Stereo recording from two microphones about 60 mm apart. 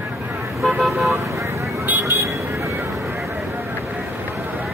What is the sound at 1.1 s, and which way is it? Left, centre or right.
Vehicle, right.